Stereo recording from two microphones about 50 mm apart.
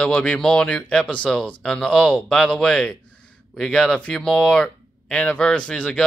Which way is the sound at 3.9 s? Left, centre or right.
Left.